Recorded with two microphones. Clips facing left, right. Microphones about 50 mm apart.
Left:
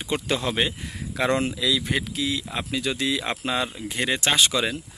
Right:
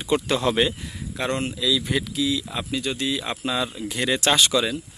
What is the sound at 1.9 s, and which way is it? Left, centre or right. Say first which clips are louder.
Speech: right 2 dB; left.